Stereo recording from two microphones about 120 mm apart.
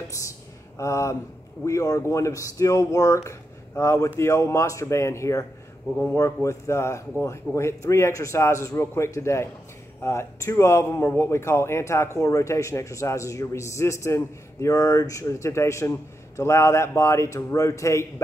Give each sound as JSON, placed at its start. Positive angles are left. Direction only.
{"t": 0.7, "sound": "a man's voice", "side_deg": 25}